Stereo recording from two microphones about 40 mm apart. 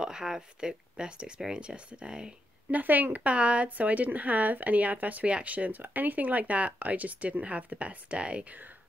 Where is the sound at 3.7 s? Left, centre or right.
Right.